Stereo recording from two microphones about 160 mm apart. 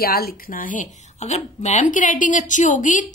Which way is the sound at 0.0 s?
70° left (ahead or behind).